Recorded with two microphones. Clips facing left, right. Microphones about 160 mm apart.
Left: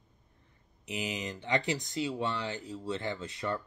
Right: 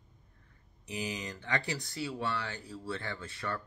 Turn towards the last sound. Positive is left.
turn(degrees=20)  # may be behind; listen again after turning